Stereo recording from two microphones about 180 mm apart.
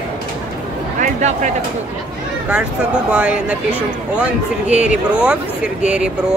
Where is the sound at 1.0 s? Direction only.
45° right (ahead or behind).